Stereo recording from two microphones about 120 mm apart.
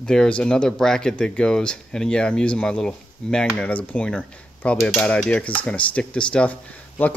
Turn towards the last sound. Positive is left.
turn(degrees=10)  # may be behind; listen again after turning